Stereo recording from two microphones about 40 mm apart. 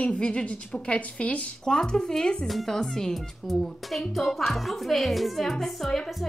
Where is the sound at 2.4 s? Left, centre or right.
Centre.